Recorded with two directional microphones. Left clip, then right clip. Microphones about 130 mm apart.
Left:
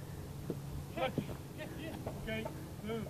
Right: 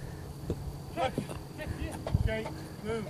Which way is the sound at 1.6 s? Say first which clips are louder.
Right 5 dB; 35° right (ahead or behind).